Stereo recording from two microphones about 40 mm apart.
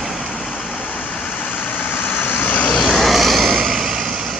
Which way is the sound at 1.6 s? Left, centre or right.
Left.